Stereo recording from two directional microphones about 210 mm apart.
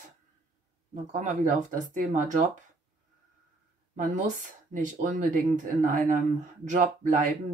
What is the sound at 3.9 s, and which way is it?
Speech, 35° right (ahead or behind).